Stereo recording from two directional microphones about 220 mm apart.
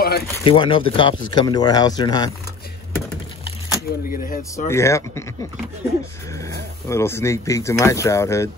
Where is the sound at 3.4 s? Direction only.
15° left (ahead or behind).